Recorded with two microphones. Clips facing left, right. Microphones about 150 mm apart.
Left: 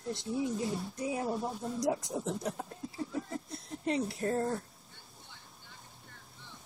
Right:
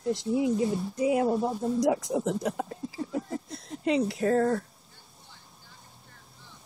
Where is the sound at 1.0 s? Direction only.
75° right (ahead or behind).